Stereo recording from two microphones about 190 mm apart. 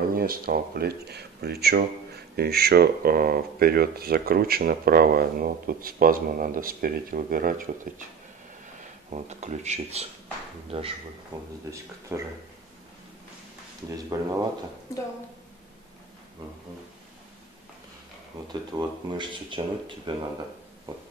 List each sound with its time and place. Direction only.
0.1 s speech: 50° right (ahead or behind)
9.1 s speech: 35° right (ahead or behind); by 12.2 s 10° right (ahead or behind)
13.8 s speech: 15° right (ahead or behind)
18.5 s speech: 20° right (ahead or behind)